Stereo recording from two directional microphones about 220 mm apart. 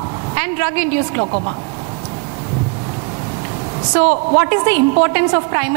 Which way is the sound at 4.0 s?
15° right (ahead or behind).